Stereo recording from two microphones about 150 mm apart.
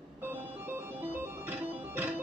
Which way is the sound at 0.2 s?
10° right (ahead or behind).